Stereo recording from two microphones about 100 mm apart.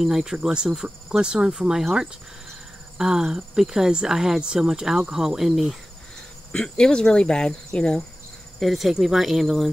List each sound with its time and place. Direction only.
0.0 s cricket: 5° right (ahead or behind)
3.0 s speech: 5° right (ahead or behind)
6.5 s speech: 10° left (ahead or behind)